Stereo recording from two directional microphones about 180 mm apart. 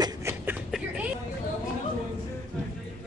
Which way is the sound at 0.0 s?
15° right (ahead or behind).